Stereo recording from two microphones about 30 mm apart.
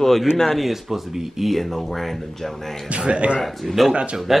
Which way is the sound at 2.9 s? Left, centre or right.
Right.